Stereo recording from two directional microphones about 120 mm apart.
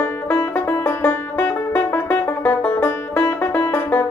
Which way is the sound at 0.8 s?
15° left (ahead or behind).